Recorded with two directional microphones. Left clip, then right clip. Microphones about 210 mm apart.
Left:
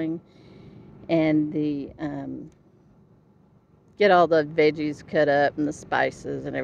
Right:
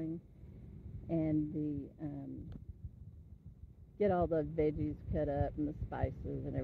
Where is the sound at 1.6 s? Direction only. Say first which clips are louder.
Left 13 dB; 50° left (ahead or behind).